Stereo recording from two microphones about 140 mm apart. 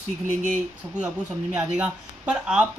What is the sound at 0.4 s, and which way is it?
Speech, 65° right (ahead or behind).